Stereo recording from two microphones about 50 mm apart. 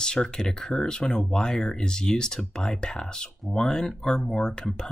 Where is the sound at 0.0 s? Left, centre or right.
Centre.